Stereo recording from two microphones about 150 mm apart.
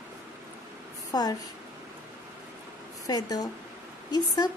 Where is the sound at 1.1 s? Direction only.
25° left (ahead or behind).